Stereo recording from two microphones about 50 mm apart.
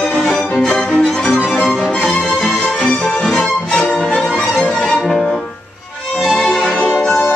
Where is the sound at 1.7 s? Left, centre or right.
Centre.